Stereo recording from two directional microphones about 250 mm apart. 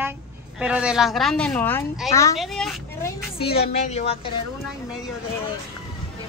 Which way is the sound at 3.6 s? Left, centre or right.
Left.